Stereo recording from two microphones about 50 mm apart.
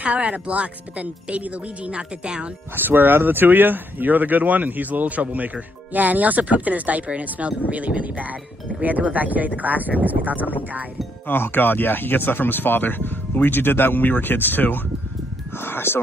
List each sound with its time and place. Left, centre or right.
0.0 s speech: right
2.7 s speech: right
11.2 s speech: left